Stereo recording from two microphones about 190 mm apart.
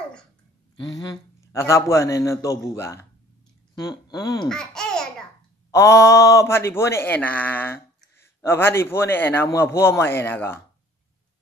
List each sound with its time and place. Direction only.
0.9 s speech: 20° left (ahead or behind)
4.5 s babbling: 5° left (ahead or behind)
5.7 s speech: 15° left (ahead or behind)